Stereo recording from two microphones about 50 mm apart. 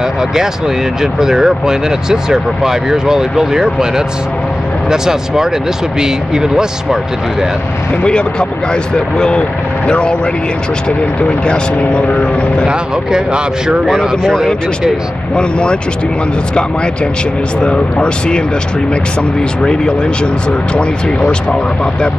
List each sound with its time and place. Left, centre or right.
1.2 s speech: centre
8.0 s speech: centre
11.1 s speech: left
12.6 s speech: centre
15.3 s speech: centre
17.6 s speech: left
19.6 s speech: centre